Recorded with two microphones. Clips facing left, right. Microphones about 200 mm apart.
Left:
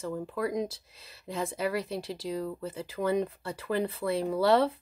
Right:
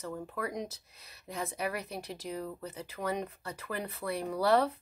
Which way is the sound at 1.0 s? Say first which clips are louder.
Left 5 dB; 30° left (ahead or behind).